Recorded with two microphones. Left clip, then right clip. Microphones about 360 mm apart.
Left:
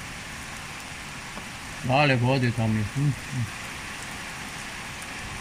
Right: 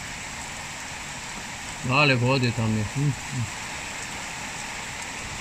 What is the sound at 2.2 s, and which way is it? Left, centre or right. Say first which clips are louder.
Speech: right 1 dB; right.